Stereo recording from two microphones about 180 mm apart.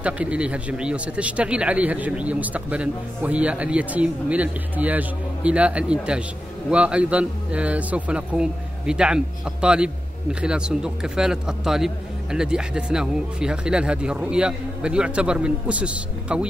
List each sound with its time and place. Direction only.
0.0 s a man's voice: 5° right (ahead or behind)